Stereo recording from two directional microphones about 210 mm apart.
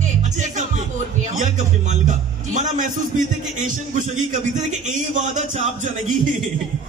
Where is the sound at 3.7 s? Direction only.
35° right (ahead or behind).